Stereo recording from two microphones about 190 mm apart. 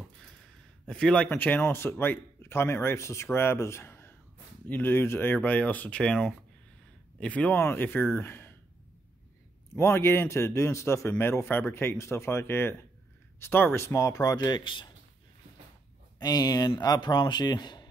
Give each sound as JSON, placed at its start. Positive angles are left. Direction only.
{"t": 0.8, "sound": "speech", "side_deg": 5}
{"t": 9.8, "sound": "speech", "side_deg": 15}
{"t": 16.2, "sound": "speech", "side_deg": 20}